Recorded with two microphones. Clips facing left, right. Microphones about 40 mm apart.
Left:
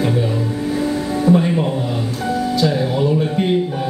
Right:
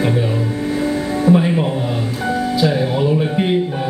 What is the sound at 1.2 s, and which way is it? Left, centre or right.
Speech, centre.